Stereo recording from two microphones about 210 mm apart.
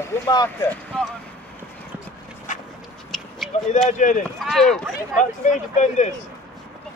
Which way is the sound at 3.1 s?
Centre (ahead or behind).